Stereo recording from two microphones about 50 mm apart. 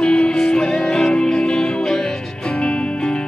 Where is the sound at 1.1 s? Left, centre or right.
Centre.